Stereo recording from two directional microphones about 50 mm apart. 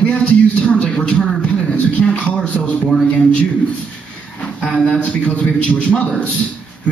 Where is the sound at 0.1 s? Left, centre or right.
Left.